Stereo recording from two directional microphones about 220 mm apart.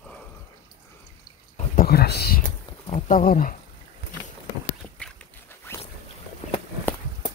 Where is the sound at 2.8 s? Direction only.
30° left (ahead or behind).